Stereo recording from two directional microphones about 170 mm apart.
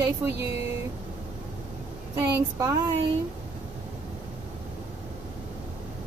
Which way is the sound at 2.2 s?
15° right (ahead or behind).